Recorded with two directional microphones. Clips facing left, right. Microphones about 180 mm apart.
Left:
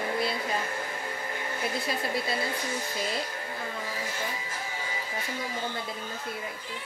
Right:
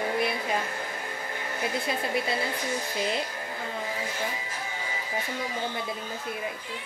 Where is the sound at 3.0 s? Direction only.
20° right (ahead or behind).